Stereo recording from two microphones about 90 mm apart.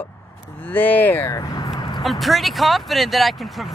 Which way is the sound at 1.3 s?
45° left (ahead or behind).